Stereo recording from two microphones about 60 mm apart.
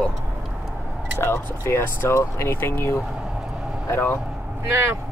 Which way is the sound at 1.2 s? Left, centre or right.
Left.